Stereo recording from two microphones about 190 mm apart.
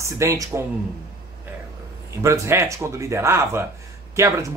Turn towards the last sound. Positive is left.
turn(degrees=-15)  # may be behind; listen again after turning